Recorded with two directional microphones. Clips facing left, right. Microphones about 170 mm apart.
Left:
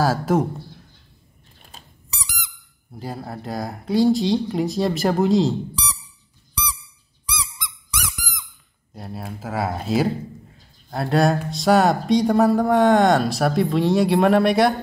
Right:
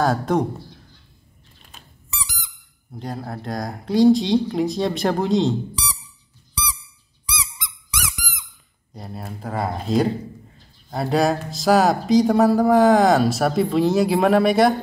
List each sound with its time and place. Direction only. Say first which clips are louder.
0.0 s speech: even; 5° left (ahead or behind)
1.7 s squeak: right 3 dB; 35° left (ahead or behind)
2.9 s speech: right 1 dB; 5° left (ahead or behind)
7.2 s honk: left 1 dB; 5° right (ahead or behind)
8.9 s speech: left 1 dB; centre (ahead or behind)